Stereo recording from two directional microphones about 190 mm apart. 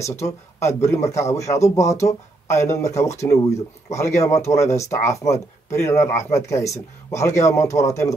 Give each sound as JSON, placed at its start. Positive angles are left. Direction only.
{"t": 0.0, "sound": "speech", "side_deg": 15}